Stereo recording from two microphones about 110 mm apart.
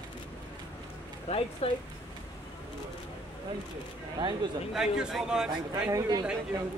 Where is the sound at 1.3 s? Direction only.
90° left.